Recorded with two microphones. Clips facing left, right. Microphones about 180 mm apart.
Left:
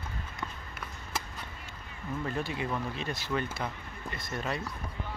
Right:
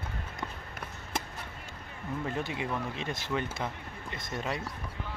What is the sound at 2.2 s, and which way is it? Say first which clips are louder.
Speech: left 1 dB; 20° right (ahead or behind).